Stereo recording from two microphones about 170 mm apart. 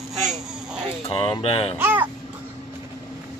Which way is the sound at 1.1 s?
30° left (ahead or behind).